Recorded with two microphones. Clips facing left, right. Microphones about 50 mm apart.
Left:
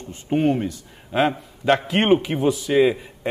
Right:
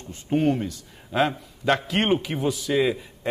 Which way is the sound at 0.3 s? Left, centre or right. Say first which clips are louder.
Left 2 dB; centre.